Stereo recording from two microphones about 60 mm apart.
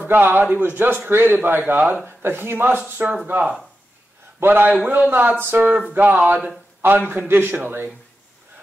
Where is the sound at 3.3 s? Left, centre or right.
Right.